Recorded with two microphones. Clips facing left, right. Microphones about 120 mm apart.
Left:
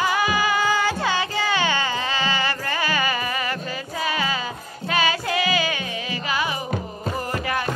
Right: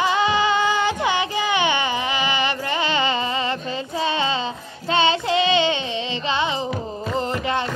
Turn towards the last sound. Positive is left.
turn(degrees=-25)  # may be behind; listen again after turning